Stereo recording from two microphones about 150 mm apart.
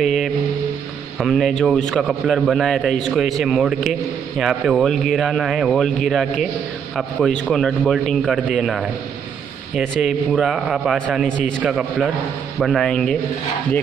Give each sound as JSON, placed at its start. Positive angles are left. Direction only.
{"t": 0.0, "sound": "a man's voice", "side_deg": 0}